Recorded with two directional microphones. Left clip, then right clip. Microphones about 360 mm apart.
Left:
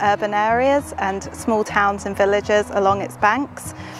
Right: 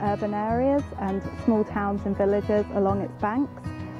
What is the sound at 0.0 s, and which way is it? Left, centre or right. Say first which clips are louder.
A woman's voice: left 9 dB; centre.